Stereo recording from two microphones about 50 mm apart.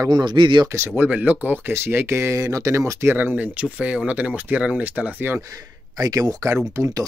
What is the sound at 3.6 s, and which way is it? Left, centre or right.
Speech, right.